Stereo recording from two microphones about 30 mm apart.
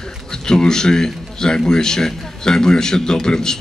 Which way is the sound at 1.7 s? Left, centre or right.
Left.